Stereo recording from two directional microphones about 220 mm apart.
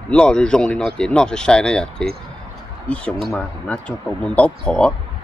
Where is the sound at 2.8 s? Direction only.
5° left (ahead or behind).